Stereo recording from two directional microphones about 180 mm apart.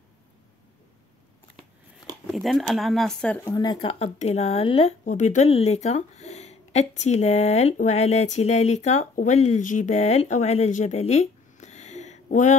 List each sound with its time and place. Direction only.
2.3 s speech: centre (ahead or behind)
3.5 s speech: 30° left (ahead or behind)